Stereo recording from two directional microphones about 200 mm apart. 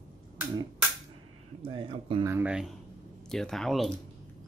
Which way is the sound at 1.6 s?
25° right (ahead or behind).